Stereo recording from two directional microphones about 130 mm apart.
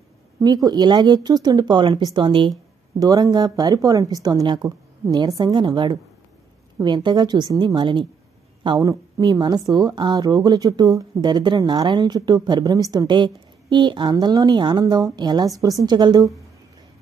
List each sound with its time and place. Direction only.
0.4 s speech: 30° right (ahead or behind)
8.7 s a woman's voice: 30° right (ahead or behind)